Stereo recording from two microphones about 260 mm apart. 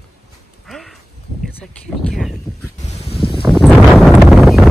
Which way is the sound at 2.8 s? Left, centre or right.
Left.